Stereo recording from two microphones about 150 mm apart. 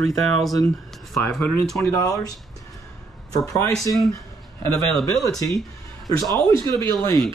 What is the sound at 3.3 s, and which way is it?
Speech, 20° left (ahead or behind).